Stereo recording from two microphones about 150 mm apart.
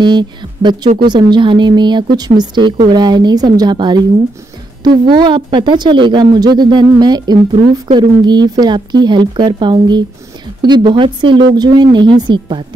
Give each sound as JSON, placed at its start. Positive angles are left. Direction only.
{"t": 0.0, "sound": "a woman's voice", "side_deg": -30}